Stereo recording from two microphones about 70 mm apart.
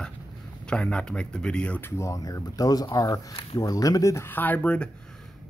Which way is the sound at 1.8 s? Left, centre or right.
Left.